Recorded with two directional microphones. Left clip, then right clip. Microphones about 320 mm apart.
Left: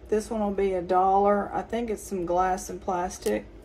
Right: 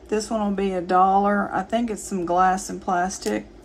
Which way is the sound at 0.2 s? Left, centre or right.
Right.